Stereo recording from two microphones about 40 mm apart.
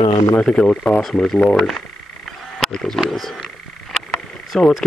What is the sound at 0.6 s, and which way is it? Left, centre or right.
Speech, left.